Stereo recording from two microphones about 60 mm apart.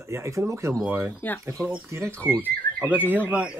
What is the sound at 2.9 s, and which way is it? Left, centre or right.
Speech, right.